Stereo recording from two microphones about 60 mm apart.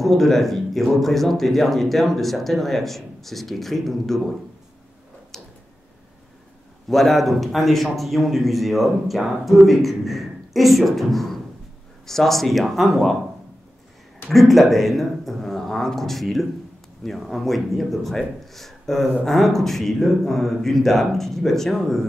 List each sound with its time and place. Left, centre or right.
0.0 s speech: centre
6.9 s speech: centre
14.3 s speech: centre